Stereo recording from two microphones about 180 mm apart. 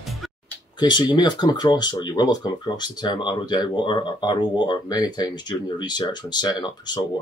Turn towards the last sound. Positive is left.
turn(degrees=25)  # may be behind; listen again after turning